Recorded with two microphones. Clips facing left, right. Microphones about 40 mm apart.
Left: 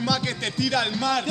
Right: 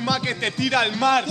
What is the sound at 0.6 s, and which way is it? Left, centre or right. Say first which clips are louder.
Speech: right 4 dB; right.